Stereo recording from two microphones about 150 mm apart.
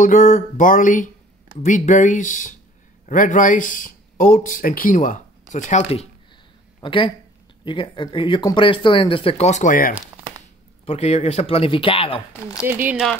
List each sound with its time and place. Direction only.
0.0 s speech: 60° left (ahead or behind)
6.8 s speech: 35° left (ahead or behind); by 9.9 s 65° left (ahead or behind)
9.9 s a sound: 10° right (ahead or behind)
10.9 s speech: 45° left (ahead or behind)
12.3 s speech: 10° right (ahead or behind)